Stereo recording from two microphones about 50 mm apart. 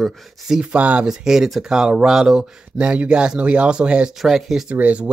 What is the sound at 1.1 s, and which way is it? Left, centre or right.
Speech, centre.